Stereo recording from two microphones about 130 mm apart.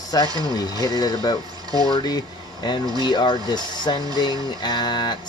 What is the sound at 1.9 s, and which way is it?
Speech, 30° left (ahead or behind).